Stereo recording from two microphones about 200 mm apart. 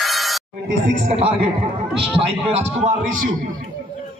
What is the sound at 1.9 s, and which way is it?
A man's voice, 30° right (ahead or behind).